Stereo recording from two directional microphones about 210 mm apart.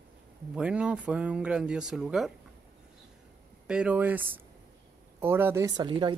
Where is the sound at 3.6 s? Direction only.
5° right (ahead or behind).